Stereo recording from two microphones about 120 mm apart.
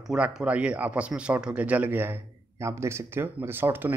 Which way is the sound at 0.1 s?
5° right (ahead or behind).